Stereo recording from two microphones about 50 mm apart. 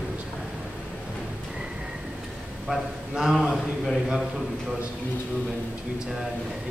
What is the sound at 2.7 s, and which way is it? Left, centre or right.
Speech, centre.